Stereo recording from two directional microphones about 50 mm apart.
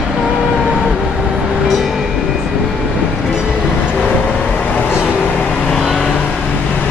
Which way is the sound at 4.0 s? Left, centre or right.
Centre.